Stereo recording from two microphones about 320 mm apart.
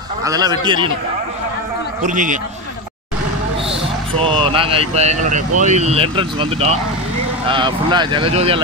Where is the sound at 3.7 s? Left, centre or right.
Centre.